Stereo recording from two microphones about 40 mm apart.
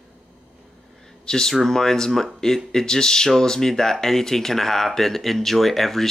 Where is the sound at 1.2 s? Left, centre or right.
Centre.